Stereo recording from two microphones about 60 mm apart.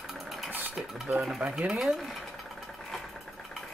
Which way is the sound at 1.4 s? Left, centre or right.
Centre.